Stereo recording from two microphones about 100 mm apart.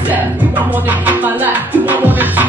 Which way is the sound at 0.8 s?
15° right (ahead or behind).